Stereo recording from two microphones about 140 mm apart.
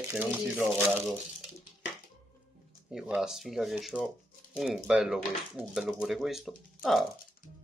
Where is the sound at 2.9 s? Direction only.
5° right (ahead or behind).